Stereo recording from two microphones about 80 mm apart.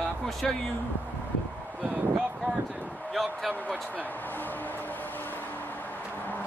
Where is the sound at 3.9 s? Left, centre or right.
Left.